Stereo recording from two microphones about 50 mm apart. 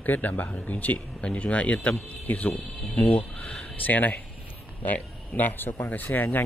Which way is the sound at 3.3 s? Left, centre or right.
Left.